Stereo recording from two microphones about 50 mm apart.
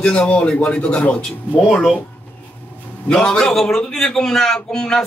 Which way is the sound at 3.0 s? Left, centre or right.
Centre.